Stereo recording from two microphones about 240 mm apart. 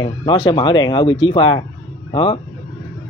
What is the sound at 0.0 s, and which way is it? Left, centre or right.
Speech, centre.